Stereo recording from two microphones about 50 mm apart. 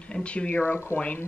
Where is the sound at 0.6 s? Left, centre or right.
Left.